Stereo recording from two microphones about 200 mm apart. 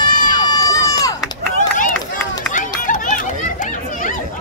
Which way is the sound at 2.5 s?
40° left (ahead or behind).